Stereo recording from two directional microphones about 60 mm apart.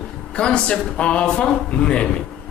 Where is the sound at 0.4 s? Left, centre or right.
Centre.